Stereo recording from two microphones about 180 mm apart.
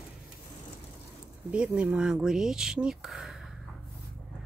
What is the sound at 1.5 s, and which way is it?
Speech, 5° right (ahead or behind).